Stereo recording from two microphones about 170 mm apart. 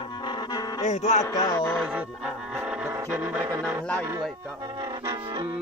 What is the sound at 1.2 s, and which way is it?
Music, 25° left (ahead or behind).